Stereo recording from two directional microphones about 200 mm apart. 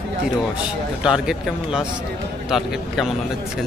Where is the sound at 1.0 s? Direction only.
5° right (ahead or behind).